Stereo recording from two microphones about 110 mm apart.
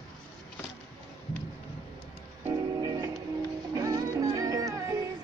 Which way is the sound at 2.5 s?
35° right (ahead or behind).